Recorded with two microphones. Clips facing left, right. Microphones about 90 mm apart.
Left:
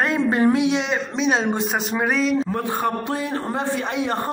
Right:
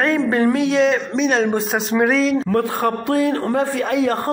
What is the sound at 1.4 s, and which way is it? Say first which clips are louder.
Speech: right 3 dB; centre (ahead or behind).